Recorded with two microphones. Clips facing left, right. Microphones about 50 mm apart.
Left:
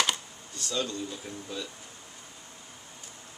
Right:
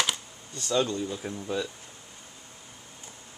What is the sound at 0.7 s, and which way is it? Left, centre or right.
Speech, right.